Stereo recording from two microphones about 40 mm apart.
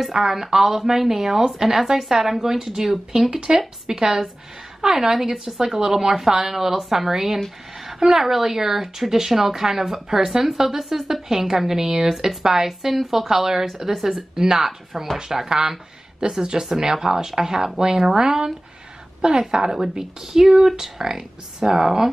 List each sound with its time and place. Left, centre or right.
0.1 s a woman's voice: centre